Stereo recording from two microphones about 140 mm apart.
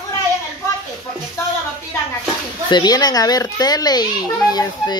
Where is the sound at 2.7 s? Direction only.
30° left (ahead or behind).